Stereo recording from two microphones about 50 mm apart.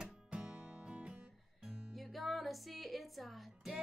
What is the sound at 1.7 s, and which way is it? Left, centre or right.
Music, centre.